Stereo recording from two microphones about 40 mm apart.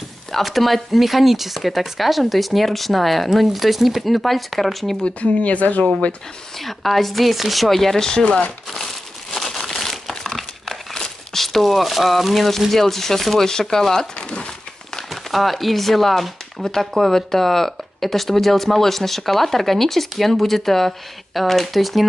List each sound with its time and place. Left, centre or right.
0.4 s speech: centre
5.0 s speech: left
6.6 s speech: centre
8.1 s speech: centre
8.7 s crumpling: centre
11.0 s speech: centre
15.3 s speech: centre